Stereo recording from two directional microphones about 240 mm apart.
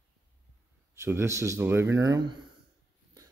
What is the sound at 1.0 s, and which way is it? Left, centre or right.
Speech, centre.